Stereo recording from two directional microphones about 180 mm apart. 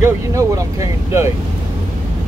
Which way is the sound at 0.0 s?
15° right (ahead or behind).